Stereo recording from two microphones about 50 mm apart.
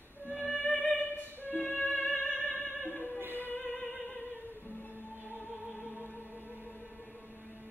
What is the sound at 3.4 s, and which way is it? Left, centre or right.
Music, left.